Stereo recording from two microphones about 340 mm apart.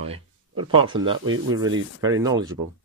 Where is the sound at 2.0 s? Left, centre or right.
Centre.